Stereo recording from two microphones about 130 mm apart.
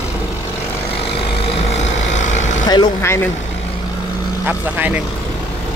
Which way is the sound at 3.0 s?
20° left (ahead or behind).